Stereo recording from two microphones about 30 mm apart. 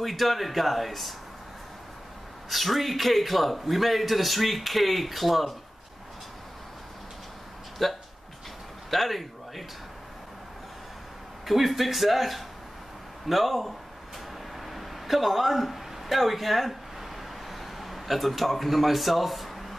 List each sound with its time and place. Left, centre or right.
0.0 s a man's voice: centre
2.5 s a man's voice: centre
7.8 s a man's voice: centre
11.4 s a man's voice: centre
17.5 s a sound: centre